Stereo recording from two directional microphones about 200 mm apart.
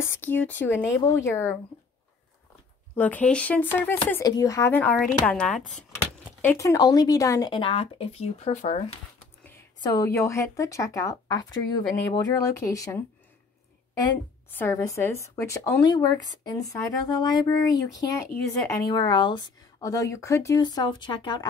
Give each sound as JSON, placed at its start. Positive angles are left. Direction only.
{"t": 0.0, "sound": "speech", "side_deg": 10}
{"t": 3.0, "sound": "speech", "side_deg": 10}
{"t": 6.4, "sound": "speech", "side_deg": 15}
{"t": 9.8, "sound": "speech", "side_deg": 15}
{"t": 14.5, "sound": "speech", "side_deg": 10}